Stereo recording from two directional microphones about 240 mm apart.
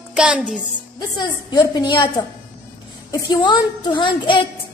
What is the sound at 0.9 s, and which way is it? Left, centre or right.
A woman's voice, centre.